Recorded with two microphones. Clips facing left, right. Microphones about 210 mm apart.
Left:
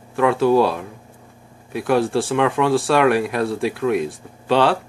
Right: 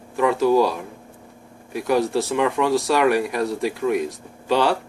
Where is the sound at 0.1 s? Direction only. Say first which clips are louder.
Left 2 dB; 70° left (ahead or behind).